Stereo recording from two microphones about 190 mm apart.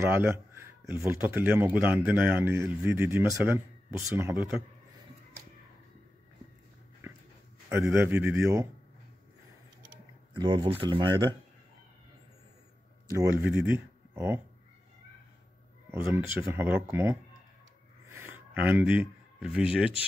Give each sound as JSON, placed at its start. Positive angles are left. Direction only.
{"t": 0.0, "sound": "speech", "side_deg": -10}
{"t": 7.0, "sound": "dog", "side_deg": -10}
{"t": 7.7, "sound": "speech", "side_deg": -10}
{"t": 10.3, "sound": "speech", "side_deg": -25}
{"t": 13.2, "sound": "speech", "side_deg": -10}
{"t": 15.9, "sound": "speech", "side_deg": -10}
{"t": 18.1, "sound": "a sound", "side_deg": -10}